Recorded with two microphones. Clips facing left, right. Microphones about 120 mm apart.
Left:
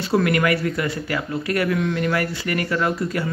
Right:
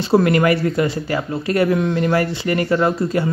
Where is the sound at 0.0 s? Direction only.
30° right (ahead or behind).